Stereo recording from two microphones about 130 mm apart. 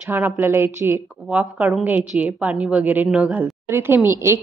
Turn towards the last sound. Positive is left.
turn(degrees=-20)  # may be behind; listen again after turning